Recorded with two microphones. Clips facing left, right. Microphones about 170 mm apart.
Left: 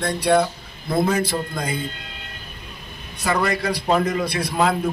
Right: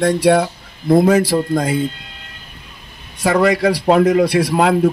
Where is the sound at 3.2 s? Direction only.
85° right.